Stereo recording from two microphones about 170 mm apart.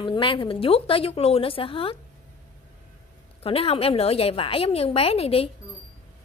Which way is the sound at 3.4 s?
35° left (ahead or behind).